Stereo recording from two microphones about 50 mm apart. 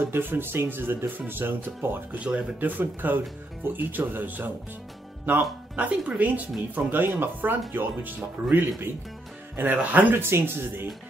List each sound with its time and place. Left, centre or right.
0.0 s speech: right
2.1 s speech: right
2.7 s speech: right
9.6 s speech: right
10.1 s speech: right